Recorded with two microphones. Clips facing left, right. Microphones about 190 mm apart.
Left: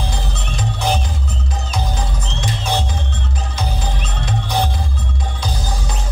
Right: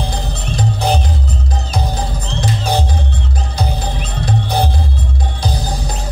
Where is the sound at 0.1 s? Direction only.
35° right (ahead or behind).